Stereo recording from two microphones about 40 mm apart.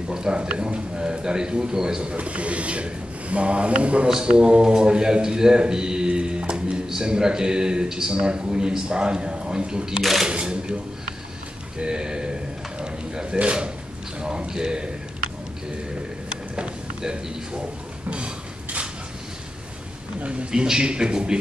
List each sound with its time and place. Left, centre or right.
0.1 s a man's voice: centre
2.0 s a man's voice: right
11.8 s a sound: centre
13.4 s a man's voice: right
16.3 s a sound: right
20.2 s a man's voice: right
20.5 s a man's voice: centre